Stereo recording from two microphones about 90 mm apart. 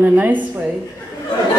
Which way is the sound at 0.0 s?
15° right (ahead or behind).